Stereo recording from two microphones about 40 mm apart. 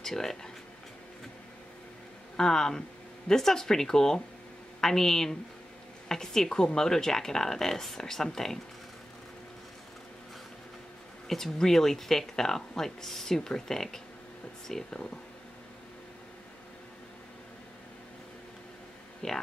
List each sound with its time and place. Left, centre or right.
0.0 s speech: centre
2.3 s speech: centre
11.2 s speech: centre
14.9 s speech: left
19.2 s speech: centre